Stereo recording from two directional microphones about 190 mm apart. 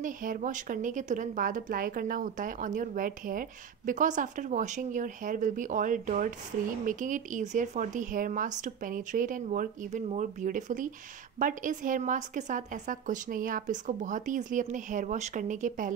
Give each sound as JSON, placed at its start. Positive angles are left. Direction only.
{"t": 0.0, "sound": "a woman's voice", "side_deg": -45}